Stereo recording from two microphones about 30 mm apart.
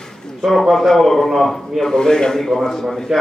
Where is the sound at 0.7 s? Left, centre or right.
Centre.